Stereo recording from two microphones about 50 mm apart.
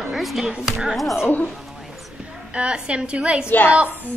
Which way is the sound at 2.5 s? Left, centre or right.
Right.